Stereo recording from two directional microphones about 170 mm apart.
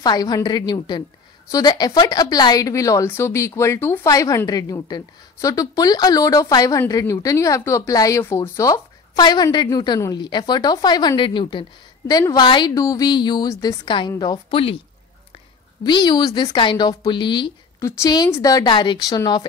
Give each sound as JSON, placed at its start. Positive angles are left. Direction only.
{"t": 0.0, "sound": "a woman's voice", "side_deg": 25}